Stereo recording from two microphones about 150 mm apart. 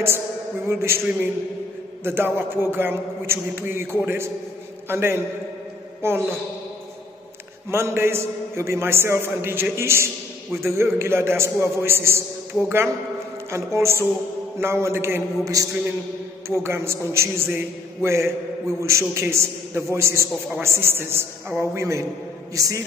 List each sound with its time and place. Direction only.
0.7 s a man's voice: 15° right (ahead or behind)
7.7 s a man's voice: 15° right (ahead or behind)